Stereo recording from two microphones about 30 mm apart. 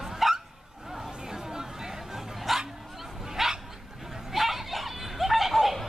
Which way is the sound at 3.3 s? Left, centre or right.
Centre.